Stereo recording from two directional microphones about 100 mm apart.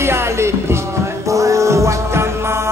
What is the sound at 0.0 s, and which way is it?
Music, 25° right (ahead or behind).